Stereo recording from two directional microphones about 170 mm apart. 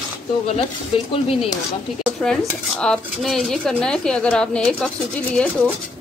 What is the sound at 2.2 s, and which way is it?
Speech, 5° left (ahead or behind).